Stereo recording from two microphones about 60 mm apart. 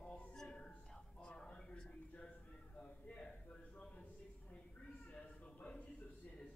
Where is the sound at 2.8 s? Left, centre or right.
Centre.